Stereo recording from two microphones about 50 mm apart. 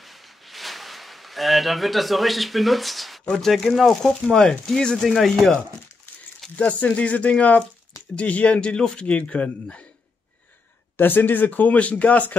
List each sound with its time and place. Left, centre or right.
0.0 s a sound: centre
3.3 s speech: centre
6.5 s speech: left
11.0 s speech: left